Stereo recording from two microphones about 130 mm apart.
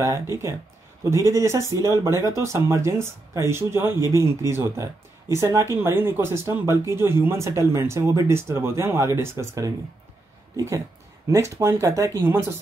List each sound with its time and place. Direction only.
0.0 s speech: 25° right (ahead or behind)